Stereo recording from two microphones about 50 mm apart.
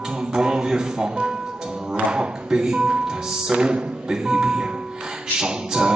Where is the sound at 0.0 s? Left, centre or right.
Centre.